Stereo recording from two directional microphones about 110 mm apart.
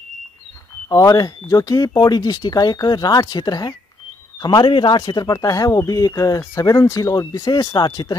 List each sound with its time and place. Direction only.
0.8 s speech: 35° left (ahead or behind)